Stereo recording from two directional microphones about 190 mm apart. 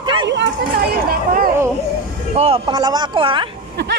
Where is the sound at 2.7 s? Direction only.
20° right (ahead or behind).